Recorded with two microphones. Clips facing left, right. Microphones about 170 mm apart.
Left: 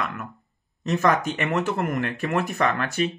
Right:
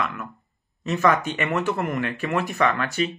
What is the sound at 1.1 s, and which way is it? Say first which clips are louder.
Speech: even; 45° left (ahead or behind).